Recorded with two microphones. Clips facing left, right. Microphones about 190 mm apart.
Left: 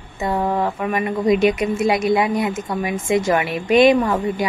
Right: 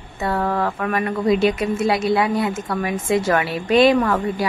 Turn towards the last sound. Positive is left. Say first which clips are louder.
# even
turn(degrees=15)  # may be behind; listen again after turning